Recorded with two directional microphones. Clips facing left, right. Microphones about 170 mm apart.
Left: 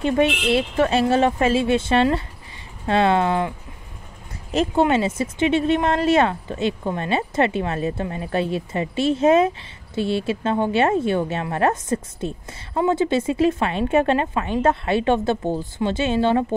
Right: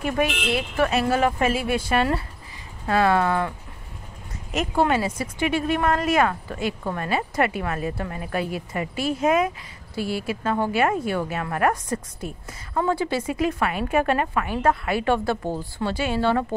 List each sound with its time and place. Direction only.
0.0 s speech: 25° left (ahead or behind)